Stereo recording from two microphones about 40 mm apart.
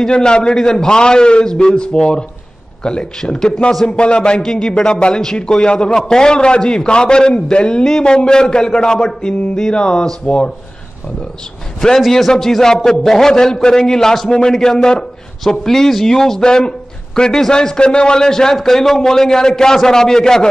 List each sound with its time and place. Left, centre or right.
0.0 s a man's voice: left
12.1 s speech: centre